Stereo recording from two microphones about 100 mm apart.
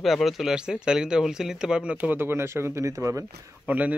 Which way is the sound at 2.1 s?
25° right (ahead or behind).